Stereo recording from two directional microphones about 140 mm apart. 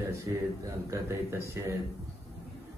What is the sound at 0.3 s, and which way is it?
A man's voice, 25° right (ahead or behind).